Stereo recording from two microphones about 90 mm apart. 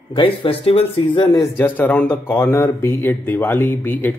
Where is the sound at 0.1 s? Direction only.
70° left (ahead or behind).